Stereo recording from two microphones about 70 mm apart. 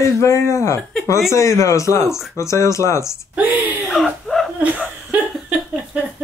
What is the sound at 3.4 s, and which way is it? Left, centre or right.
Speech, right.